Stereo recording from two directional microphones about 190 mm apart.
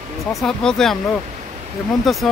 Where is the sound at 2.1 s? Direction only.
Centre (ahead or behind).